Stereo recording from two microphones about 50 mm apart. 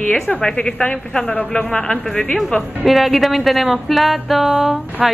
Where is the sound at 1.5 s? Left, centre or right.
Centre.